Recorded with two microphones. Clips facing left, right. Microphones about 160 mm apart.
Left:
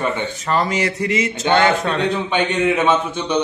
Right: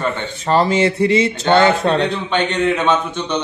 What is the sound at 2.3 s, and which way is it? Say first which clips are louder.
A man's voice: right 2 dB; 10° left (ahead or behind).